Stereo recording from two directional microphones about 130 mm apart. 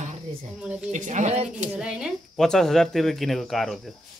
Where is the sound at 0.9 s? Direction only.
70° right (ahead or behind).